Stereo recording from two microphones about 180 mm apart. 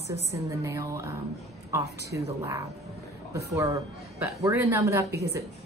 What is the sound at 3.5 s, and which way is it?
A woman's voice, 20° right (ahead or behind).